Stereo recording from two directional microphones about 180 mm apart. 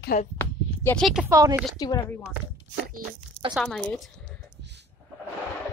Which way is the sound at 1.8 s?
20° left (ahead or behind).